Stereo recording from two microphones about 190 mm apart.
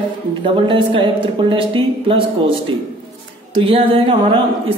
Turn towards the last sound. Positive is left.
turn(degrees=-30)  # may be behind; listen again after turning